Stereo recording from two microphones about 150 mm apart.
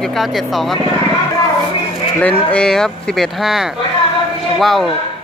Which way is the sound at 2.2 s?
10° left (ahead or behind).